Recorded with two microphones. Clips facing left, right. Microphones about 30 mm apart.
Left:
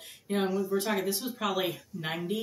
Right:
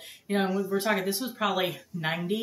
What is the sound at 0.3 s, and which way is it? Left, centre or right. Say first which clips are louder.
Speech: right 2 dB; centre.